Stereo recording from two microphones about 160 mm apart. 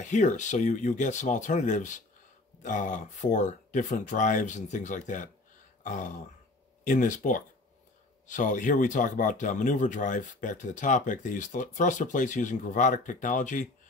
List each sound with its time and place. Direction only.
0.0 s speech: 50° left (ahead or behind)